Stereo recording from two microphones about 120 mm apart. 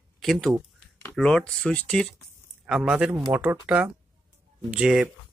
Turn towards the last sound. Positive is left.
turn(degrees=-5)  # may be behind; listen again after turning